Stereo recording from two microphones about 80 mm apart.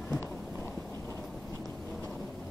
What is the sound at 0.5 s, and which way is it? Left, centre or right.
Clip-clop, right.